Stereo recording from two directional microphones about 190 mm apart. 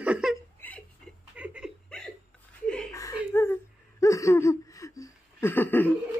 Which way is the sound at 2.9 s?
15° left (ahead or behind).